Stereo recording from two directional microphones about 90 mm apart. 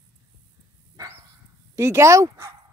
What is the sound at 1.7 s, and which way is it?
Speech, 30° right (ahead or behind).